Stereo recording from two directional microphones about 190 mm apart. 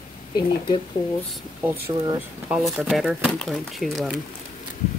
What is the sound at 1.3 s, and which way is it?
Speech, 10° right (ahead or behind).